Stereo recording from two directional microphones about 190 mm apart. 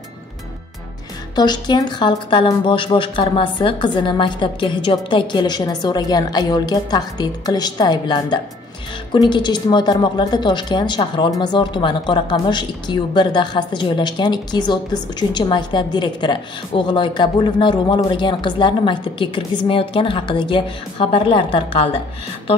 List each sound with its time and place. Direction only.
1.3 s a woman's voice: 20° left (ahead or behind)